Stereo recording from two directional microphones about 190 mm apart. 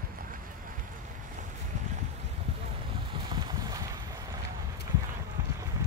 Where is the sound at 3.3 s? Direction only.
20° right (ahead or behind).